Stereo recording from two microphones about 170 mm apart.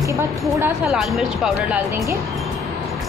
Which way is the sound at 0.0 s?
20° right (ahead or behind).